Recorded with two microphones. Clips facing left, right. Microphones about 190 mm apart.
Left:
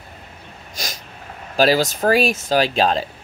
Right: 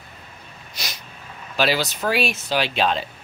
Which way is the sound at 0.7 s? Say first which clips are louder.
Left 4 dB; 45° left (ahead or behind).